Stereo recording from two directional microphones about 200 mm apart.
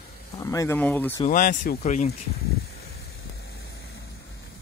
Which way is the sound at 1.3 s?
45° left (ahead or behind).